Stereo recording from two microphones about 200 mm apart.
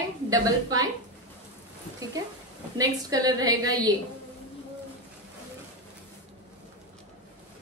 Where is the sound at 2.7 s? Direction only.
20° right (ahead or behind).